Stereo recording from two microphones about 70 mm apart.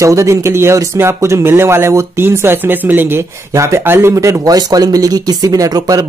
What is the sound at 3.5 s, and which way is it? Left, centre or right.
Speech, right.